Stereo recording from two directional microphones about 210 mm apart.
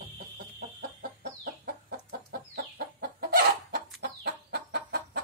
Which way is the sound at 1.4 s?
45° right (ahead or behind).